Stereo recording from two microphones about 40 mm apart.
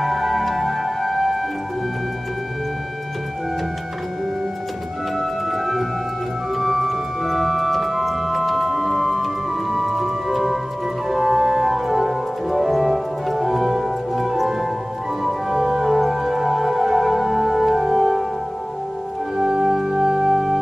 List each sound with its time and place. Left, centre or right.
0.0 s music: centre
5.1 s music: centre
19.3 s music: centre